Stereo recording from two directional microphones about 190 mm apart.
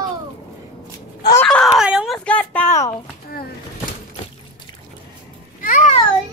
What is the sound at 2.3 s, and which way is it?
Speech, 10° left (ahead or behind).